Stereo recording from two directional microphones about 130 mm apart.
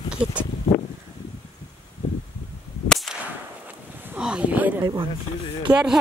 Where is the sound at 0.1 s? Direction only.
10° right (ahead or behind).